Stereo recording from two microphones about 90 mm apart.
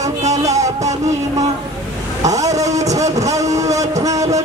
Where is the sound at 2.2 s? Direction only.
40° right (ahead or behind).